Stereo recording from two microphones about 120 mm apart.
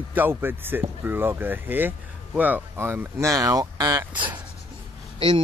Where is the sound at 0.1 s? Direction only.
15° right (ahead or behind); by 4.3 s 35° right (ahead or behind).